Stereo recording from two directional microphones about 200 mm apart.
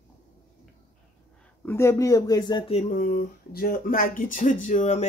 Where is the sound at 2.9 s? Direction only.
45° left (ahead or behind).